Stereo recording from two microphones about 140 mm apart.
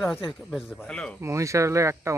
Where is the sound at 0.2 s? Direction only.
5° right (ahead or behind).